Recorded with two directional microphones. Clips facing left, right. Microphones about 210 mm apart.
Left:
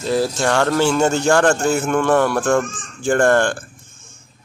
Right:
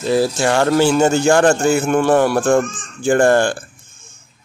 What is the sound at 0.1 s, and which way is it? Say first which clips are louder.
Speech: right 2 dB; 5° right (ahead or behind).